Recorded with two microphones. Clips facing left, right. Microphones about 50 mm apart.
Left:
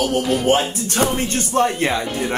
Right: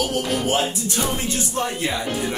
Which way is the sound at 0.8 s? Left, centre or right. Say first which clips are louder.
Left 4 dB; left.